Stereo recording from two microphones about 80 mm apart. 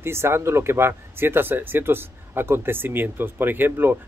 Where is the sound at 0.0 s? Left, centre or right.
Right.